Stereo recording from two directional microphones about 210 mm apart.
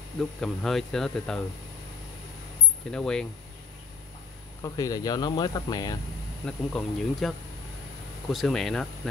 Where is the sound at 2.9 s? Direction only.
5° left (ahead or behind).